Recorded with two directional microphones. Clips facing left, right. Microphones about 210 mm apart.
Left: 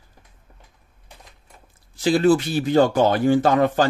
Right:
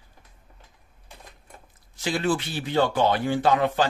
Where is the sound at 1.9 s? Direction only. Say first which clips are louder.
Left 8 dB; 35° left (ahead or behind).